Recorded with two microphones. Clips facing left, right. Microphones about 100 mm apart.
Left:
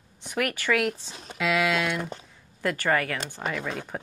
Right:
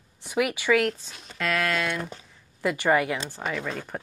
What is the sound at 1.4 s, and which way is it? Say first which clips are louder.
Speech: left 2 dB; 5° left (ahead or behind).